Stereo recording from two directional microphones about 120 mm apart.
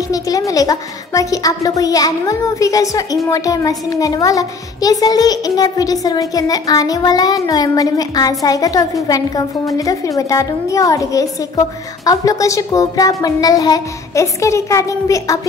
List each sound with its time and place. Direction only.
0.1 s a woman's voice: 30° left (ahead or behind)